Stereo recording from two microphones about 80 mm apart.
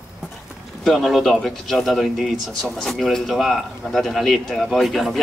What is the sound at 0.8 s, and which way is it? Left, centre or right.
Speech, centre.